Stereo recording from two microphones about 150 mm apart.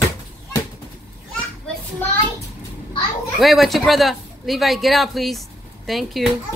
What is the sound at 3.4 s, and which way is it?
A woman's voice, centre (ahead or behind).